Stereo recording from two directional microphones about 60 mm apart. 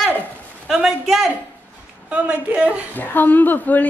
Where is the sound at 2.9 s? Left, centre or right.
Left.